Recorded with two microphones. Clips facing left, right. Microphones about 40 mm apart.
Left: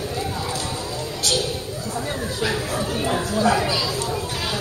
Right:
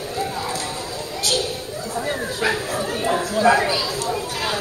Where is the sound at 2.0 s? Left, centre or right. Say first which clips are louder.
Right 2 dB; centre.